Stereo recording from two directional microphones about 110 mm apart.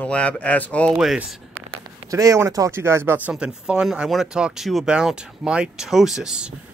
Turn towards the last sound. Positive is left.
turn(degrees=-5)  # may be behind; listen again after turning